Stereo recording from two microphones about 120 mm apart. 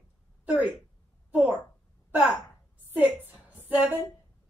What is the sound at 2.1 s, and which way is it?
Speech, 10° right (ahead or behind).